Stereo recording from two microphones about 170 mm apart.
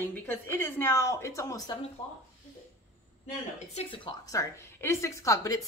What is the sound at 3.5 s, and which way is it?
Speech, 35° left (ahead or behind).